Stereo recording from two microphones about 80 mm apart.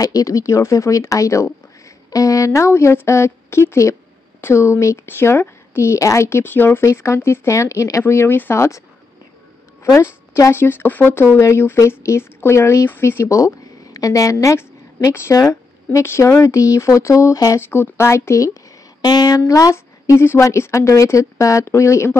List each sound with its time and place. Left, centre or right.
0.0 s speech: left
9.9 s speech: left
13.9 s a woman's voice: left
17.6 s speech: left
18.9 s speech: left